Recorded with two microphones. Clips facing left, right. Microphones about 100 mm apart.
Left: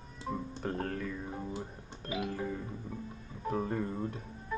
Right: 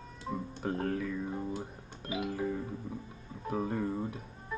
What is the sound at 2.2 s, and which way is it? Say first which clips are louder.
Music: right 3 dB; 5° right (ahead or behind).